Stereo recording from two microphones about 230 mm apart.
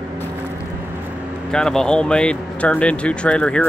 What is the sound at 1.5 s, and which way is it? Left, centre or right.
Speech, centre.